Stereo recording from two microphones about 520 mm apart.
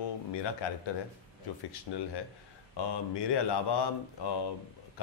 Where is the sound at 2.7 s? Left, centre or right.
Left.